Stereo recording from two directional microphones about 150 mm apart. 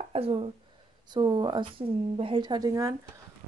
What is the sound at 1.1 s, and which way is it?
Speech, 30° right (ahead or behind).